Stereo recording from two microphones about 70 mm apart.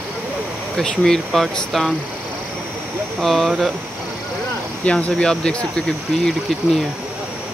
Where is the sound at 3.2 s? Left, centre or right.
Centre.